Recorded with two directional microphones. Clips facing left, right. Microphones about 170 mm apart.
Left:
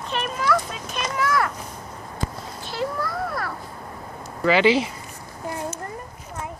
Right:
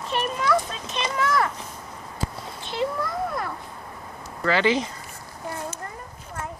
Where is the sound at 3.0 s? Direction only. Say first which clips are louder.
Even; 20° right (ahead or behind).